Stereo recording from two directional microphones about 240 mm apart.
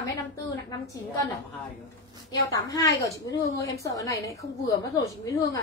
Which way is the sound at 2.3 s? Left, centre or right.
Centre.